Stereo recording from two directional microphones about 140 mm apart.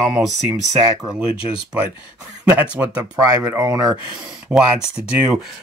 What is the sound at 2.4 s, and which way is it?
Speech, 10° right (ahead or behind).